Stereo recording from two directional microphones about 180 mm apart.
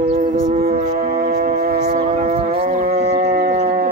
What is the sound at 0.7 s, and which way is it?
Howl, 40° right (ahead or behind).